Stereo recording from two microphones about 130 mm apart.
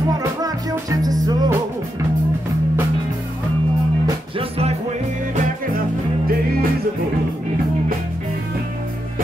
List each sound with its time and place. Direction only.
0.2 s music: 30° right (ahead or behind)
4.4 s music: 50° right (ahead or behind)